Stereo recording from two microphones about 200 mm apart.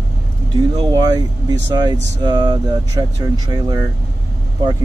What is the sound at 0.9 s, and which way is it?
Speech, 20° right (ahead or behind).